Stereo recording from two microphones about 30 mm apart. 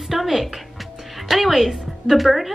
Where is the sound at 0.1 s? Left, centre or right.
Centre.